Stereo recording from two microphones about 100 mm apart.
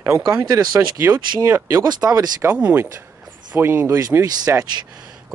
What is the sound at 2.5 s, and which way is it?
Speech, 10° right (ahead or behind).